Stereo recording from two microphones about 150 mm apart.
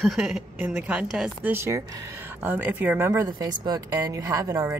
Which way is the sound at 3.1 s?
25° right (ahead or behind).